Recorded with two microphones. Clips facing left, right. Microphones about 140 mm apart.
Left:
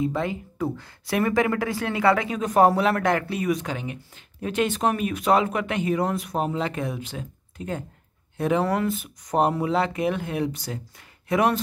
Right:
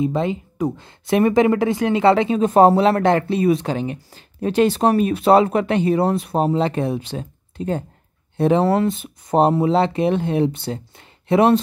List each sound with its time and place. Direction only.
0.0 s speech: 20° right (ahead or behind)